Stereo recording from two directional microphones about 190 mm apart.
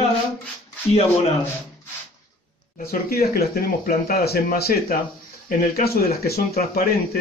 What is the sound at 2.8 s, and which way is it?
Speech, 50° left (ahead or behind).